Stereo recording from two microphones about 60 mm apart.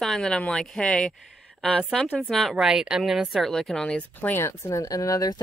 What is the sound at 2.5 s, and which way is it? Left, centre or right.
Speech, centre.